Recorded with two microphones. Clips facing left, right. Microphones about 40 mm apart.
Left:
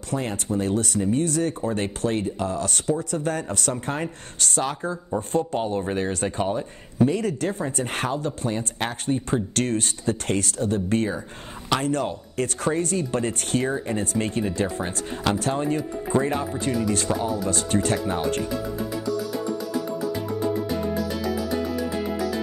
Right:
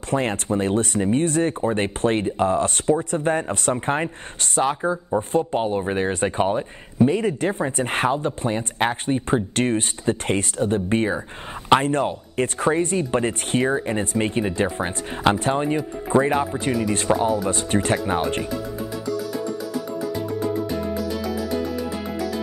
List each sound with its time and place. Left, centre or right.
0.1 s speech: right